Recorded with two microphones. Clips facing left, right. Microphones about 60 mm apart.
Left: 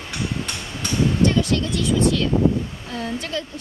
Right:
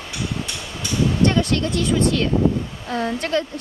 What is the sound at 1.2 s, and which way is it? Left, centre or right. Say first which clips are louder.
Speech: right 2 dB; right.